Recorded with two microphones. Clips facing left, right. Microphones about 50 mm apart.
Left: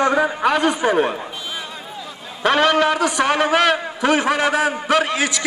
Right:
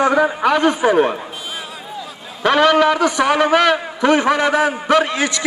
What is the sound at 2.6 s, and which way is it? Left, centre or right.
Speech, left.